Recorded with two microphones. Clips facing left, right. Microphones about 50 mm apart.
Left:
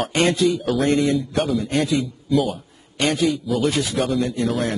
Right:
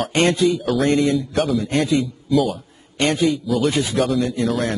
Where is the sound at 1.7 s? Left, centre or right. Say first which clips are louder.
Right 2 dB; right.